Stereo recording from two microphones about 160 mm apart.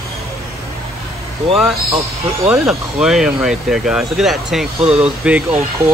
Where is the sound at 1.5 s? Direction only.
Centre (ahead or behind).